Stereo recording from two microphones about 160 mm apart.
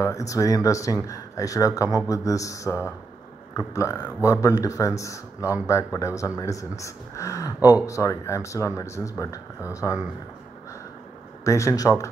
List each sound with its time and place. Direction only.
0.0 s speech: 20° left (ahead or behind)
11.4 s speech: 20° left (ahead or behind)